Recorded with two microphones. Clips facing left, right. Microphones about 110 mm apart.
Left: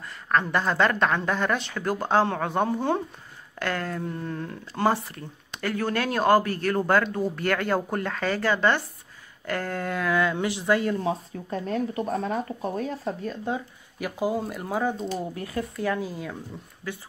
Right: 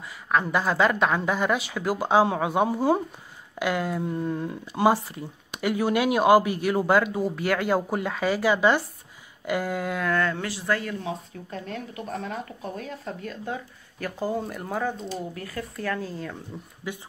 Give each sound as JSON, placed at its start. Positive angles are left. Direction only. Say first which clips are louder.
{"t": 0.3, "sound": "speech", "louder": "even", "side_deg": -5}
{"t": 11.0, "sound": "speech", "louder": "left 5 dB", "side_deg": 35}
{"t": 13.9, "sound": "speech", "louder": "left 2 dB", "side_deg": 10}
{"t": 15.3, "sound": "speech", "louder": "left 3 dB", "side_deg": 20}
{"t": 16.8, "sound": "speech", "louder": "right 1 dB", "side_deg": -15}